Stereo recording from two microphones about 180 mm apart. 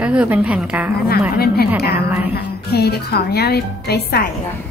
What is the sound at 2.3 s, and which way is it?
A woman's voice, 65° left (ahead or behind).